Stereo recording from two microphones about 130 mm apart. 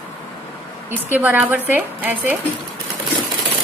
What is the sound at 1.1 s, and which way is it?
Speech, 10° right (ahead or behind).